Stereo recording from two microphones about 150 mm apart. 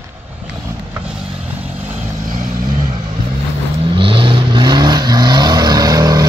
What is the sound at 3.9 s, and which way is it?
Vehicle, 35° right (ahead or behind).